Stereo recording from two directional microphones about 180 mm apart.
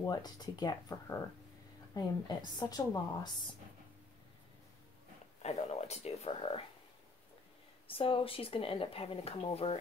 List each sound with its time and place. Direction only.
0.0 s a woman's voice: 20° left (ahead or behind)
5.4 s speech: 35° left (ahead or behind)
7.9 s speech: 30° left (ahead or behind)